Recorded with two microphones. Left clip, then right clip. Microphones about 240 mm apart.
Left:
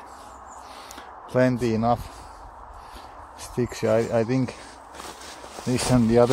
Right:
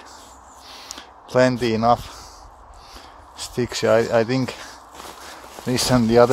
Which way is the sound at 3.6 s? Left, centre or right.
Right.